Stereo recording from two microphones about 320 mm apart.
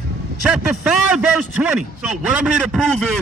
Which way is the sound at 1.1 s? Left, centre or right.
Centre.